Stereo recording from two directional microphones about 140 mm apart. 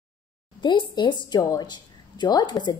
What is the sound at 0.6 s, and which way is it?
A woman's voice, 35° left (ahead or behind).